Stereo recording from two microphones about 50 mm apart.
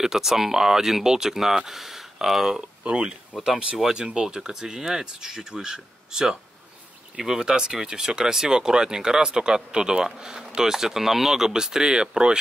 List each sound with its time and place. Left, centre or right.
0.0 s speech: centre
2.8 s speech: centre